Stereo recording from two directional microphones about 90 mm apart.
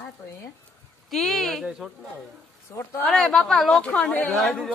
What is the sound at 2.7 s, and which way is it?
Speech, 25° left (ahead or behind).